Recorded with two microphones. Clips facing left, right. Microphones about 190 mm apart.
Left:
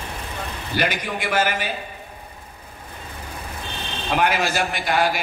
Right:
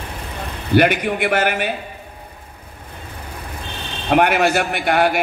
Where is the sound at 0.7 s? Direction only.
60° right (ahead or behind).